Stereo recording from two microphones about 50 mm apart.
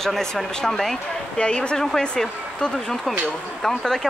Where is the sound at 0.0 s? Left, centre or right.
Centre.